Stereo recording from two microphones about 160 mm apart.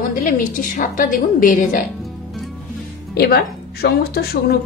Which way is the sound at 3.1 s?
80° left.